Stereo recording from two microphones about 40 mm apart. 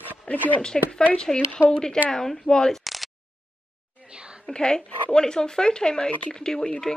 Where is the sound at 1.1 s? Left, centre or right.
Centre.